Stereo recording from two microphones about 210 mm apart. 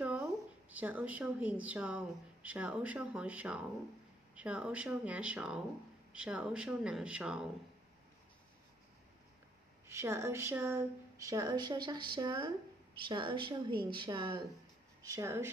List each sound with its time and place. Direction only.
0.0 s a woman's voice: 5° right (ahead or behind)
9.8 s speech: 15° right (ahead or behind)